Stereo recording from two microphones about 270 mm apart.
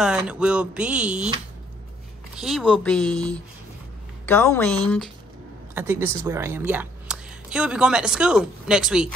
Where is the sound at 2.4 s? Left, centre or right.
Centre.